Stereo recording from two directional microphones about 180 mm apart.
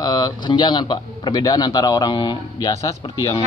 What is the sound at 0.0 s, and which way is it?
A man's voice, 20° left (ahead or behind).